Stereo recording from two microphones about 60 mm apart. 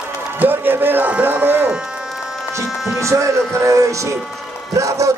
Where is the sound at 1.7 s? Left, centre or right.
Centre.